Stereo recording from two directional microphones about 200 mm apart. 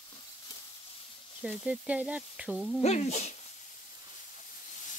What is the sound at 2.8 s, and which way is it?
Speech, 35° left (ahead or behind).